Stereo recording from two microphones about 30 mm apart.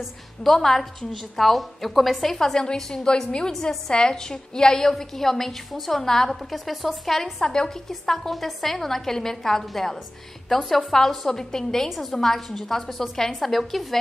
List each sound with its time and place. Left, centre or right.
0.4 s a woman's voice: centre
2.3 s a woman's voice: centre
6.5 s a woman's voice: centre
7.1 s a woman's voice: centre
7.4 s a woman's voice: left
8.1 s a woman's voice: centre